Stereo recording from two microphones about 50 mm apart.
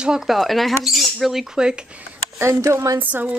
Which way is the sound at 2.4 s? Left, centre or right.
Right.